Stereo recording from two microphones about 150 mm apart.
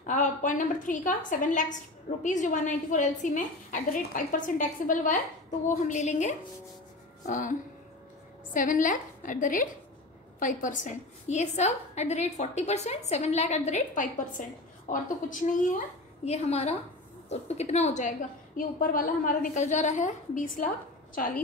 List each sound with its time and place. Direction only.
0.0 s a woman's voice: 55° left (ahead or behind)
5.9 s a woman's voice: 50° left (ahead or behind)
8.5 s a woman's voice: 60° left (ahead or behind)
16.3 s a woman's voice: 45° left (ahead or behind)
18.6 s a woman's voice: 70° left (ahead or behind)